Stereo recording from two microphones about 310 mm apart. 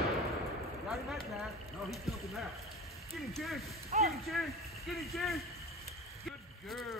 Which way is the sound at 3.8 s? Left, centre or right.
Right.